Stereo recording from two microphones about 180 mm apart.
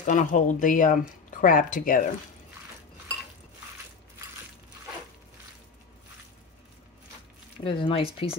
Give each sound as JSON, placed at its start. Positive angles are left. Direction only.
{"t": 0.0, "sound": "speech", "side_deg": 45}
{"t": 7.6, "sound": "speech", "side_deg": 30}